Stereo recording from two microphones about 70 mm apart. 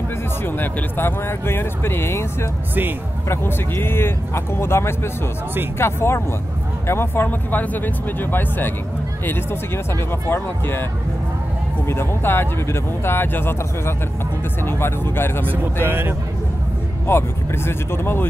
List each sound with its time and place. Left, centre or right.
0.5 s speech: left
3.3 s speech: left
11.9 s speech: left
15.5 s speech: right
17.1 s speech: left